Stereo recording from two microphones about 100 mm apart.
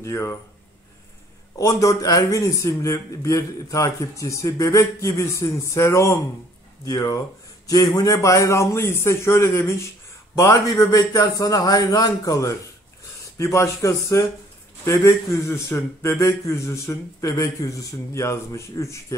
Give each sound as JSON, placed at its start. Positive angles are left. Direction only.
{"t": 0.0, "sound": "a man's voice", "side_deg": 25}
{"t": 1.6, "sound": "a man's voice", "side_deg": 30}
{"t": 7.6, "sound": "a man's voice", "side_deg": 35}